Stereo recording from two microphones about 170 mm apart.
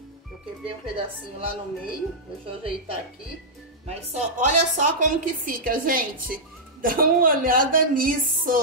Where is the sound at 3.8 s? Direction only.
45° right (ahead or behind).